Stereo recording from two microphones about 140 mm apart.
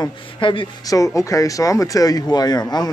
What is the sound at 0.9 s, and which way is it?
Speech, 25° left (ahead or behind).